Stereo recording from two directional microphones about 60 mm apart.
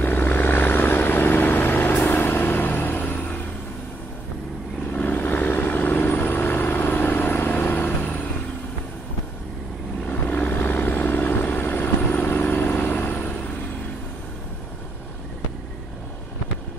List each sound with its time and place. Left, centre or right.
0.0 s vehicle: left
4.9 s vehicle: left
10.0 s vehicle: left